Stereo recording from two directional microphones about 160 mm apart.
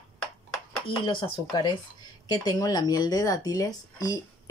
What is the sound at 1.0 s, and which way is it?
Speech, 30° left (ahead or behind).